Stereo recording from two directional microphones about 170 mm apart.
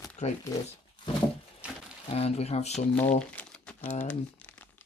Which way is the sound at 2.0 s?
35° left (ahead or behind).